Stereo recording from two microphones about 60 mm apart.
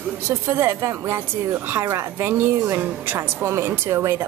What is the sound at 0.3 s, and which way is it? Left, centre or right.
Speech, right.